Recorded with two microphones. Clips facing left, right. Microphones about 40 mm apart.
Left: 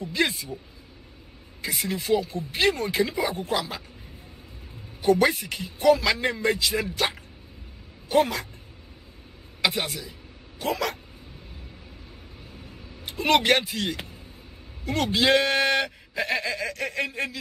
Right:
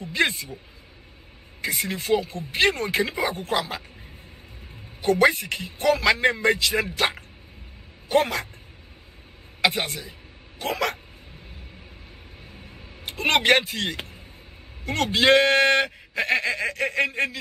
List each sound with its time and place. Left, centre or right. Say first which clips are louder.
0.0 s speech: right 2 dB; right
1.8 s speech: even; right
5.0 s speech: right 1 dB; right
8.1 s speech: even; right
9.7 s speech: right 2 dB; right
13.0 s speech: even; right